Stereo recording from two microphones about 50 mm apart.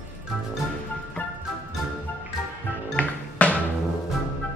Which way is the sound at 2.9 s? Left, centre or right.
Left.